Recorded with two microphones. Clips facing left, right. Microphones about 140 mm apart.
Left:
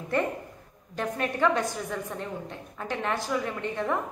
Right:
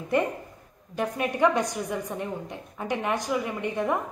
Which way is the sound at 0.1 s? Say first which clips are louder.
Right 2 dB; 15° right (ahead or behind).